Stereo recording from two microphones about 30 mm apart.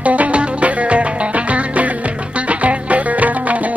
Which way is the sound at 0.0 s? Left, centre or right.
Right.